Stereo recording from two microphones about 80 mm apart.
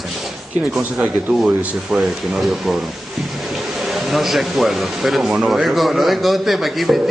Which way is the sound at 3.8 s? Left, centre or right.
Centre.